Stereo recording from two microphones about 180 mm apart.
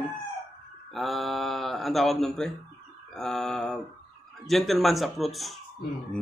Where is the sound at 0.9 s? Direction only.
Centre (ahead or behind).